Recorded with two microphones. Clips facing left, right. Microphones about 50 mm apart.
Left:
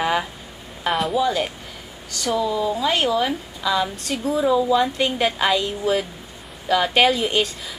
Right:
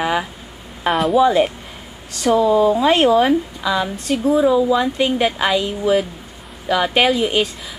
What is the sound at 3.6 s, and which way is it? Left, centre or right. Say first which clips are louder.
Speech: right 2 dB; centre.